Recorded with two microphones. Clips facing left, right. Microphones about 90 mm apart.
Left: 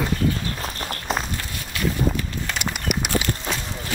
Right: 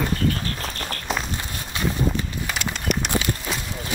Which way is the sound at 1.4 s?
20° right (ahead or behind).